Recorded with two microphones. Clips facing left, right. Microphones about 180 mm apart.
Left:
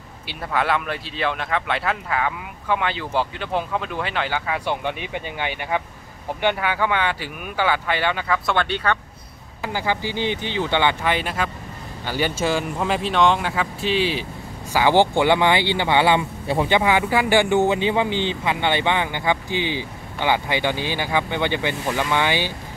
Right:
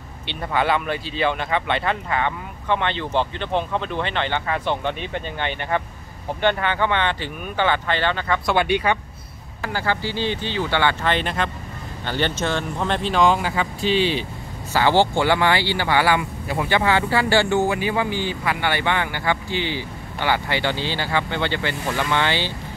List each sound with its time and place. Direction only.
0.3 s speech: centre (ahead or behind)
8.5 s speech: 10° right (ahead or behind)
9.6 s speech: 15° left (ahead or behind)
14.7 s speech: 15° left (ahead or behind)